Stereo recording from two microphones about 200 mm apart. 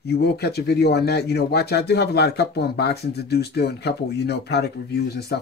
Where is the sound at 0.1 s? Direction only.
55° left (ahead or behind).